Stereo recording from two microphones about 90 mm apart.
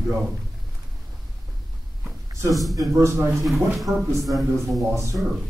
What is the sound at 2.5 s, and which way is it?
Speech, centre (ahead or behind).